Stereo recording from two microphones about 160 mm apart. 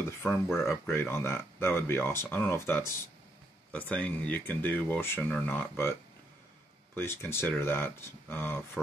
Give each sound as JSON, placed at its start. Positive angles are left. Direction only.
{"t": 0.6, "sound": "speech", "side_deg": 15}
{"t": 7.0, "sound": "speech", "side_deg": 15}